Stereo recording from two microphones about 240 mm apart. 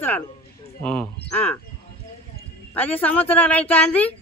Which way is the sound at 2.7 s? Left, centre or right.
Centre.